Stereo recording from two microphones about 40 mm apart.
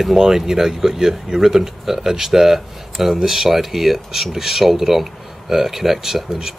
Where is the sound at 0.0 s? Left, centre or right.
Centre.